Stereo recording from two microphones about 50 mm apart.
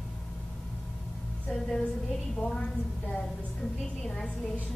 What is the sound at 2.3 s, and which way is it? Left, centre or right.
Speech, centre.